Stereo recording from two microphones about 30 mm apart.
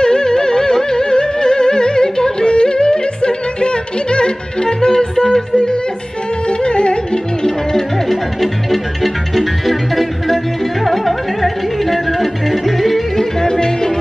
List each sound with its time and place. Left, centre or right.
0.0 s music: left
6.6 s music: left
9.0 s music: centre
13.2 s music: centre